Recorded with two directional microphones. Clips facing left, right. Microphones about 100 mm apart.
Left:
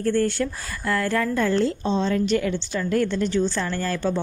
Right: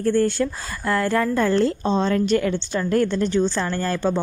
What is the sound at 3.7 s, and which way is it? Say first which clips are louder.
Speech: right 2 dB; 25° right (ahead or behind).